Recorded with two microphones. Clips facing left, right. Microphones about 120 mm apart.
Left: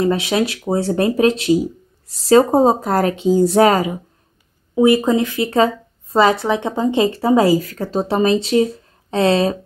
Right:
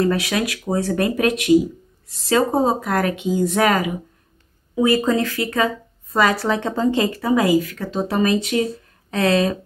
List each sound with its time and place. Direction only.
0.0 s speech: 25° left (ahead or behind)